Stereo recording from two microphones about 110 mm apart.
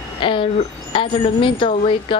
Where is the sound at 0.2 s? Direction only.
50° left (ahead or behind).